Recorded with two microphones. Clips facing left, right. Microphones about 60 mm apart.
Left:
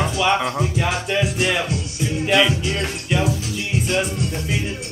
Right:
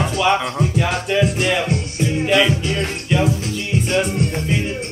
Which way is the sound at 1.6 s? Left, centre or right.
Right.